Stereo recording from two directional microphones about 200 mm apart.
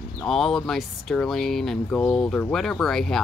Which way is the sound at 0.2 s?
Centre (ahead or behind).